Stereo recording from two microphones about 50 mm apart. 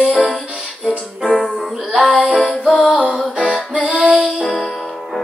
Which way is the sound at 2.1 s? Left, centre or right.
Right.